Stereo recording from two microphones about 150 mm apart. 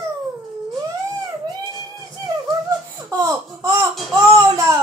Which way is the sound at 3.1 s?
25° right (ahead or behind).